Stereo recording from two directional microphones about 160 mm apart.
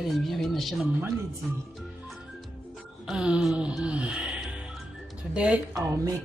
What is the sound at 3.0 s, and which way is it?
Music, 5° right (ahead or behind).